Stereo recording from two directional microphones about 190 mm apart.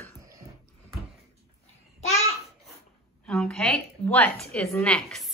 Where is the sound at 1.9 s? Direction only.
35° left (ahead or behind).